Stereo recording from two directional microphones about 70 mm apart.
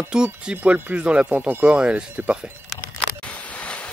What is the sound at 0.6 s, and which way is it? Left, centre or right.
Speech, right.